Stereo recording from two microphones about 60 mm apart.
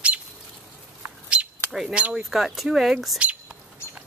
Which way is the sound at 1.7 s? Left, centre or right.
Centre.